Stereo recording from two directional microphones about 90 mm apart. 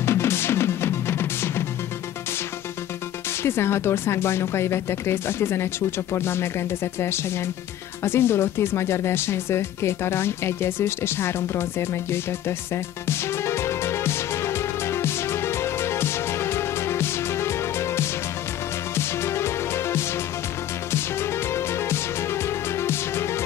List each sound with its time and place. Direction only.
0.0 s music: 30° left (ahead or behind)
3.4 s speech: 30° left (ahead or behind)
8.0 s music: 25° left (ahead or behind)